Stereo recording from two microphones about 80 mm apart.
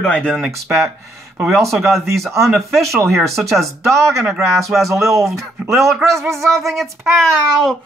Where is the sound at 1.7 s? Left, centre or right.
Centre.